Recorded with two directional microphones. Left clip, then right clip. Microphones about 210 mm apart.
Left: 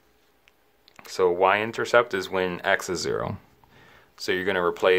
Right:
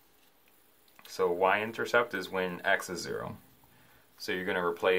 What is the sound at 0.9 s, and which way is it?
Speech, 50° left (ahead or behind).